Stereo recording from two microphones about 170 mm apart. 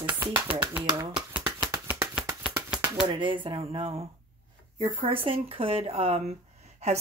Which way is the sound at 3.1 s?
30° right (ahead or behind).